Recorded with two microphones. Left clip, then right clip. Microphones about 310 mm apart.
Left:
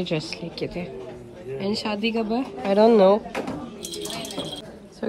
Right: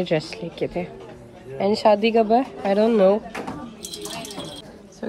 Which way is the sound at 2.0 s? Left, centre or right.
Centre.